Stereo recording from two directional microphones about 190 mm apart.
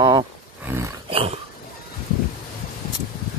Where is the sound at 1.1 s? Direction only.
30° right (ahead or behind).